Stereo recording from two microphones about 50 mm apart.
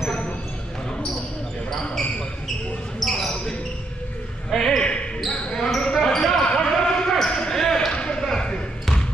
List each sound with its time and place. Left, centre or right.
3.0 s basketball bounce: centre
4.5 s basketball bounce: centre
7.9 s a sound: centre